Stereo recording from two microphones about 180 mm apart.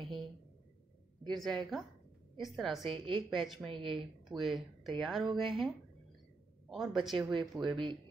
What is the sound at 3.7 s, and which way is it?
Speech, 30° right (ahead or behind).